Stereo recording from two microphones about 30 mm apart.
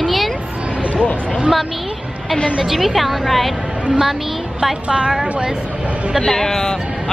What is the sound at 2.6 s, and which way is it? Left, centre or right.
Speech, centre.